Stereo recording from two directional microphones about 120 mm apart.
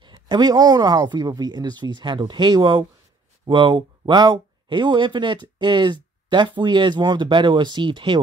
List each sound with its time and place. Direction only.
0.0 s speech: 40° right (ahead or behind)